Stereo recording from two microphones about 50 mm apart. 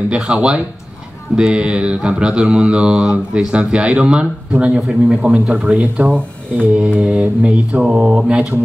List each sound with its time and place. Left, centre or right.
0.1 s speech: centre